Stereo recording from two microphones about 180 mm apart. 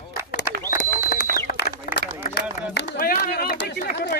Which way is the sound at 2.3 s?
65° left (ahead or behind).